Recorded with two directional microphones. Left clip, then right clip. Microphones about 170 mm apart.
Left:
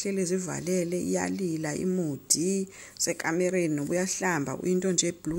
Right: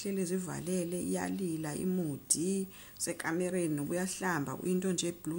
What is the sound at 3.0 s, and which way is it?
Speech, 20° left (ahead or behind).